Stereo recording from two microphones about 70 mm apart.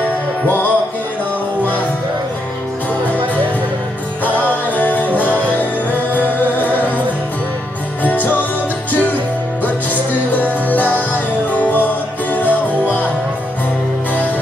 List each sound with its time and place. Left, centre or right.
4.2 s music: left
8.0 s music: left
10.3 s music: left